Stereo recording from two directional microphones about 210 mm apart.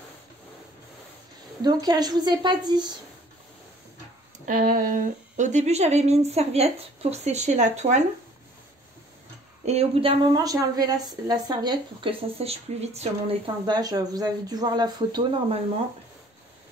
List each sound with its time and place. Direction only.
1.6 s a woman's voice: 20° right (ahead or behind)
4.5 s speech: 40° right (ahead or behind)
9.7 s a woman's voice: 30° right (ahead or behind)